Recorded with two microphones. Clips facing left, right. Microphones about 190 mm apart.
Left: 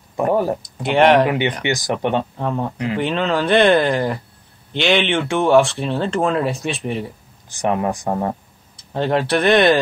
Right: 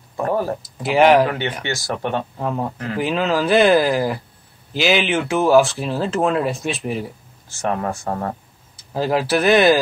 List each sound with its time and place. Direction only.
0.2 s speech: 15° left (ahead or behind)
0.6 s speech: 5° right (ahead or behind)
1.6 s speech: 15° left (ahead or behind)
2.3 s speech: centre (ahead or behind)
7.4 s speech: 15° left (ahead or behind)
8.7 s speech: 5° right (ahead or behind)